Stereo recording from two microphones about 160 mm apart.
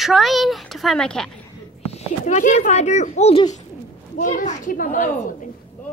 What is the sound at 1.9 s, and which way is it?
Speech, 45° left (ahead or behind).